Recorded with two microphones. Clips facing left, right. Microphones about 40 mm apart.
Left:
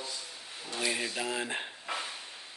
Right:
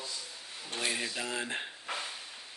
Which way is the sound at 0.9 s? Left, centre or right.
Centre.